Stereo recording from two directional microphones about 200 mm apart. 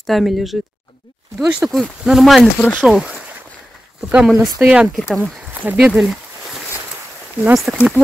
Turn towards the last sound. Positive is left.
turn(degrees=0)  # may be behind; listen again after turning